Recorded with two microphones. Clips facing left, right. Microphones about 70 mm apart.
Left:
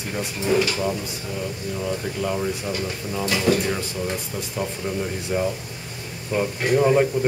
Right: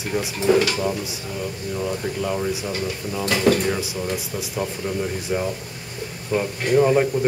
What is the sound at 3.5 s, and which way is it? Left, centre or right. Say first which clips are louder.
Speech: right 2 dB; right.